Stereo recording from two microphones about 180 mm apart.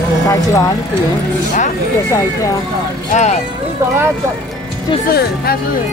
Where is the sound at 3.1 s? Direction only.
40° left (ahead or behind).